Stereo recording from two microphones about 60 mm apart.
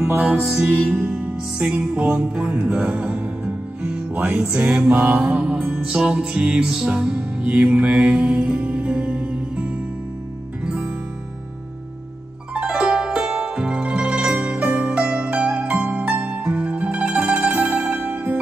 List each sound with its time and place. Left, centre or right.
0.7 s music: right
1.1 s music: centre
12.5 s zither: centre
18.1 s zither: right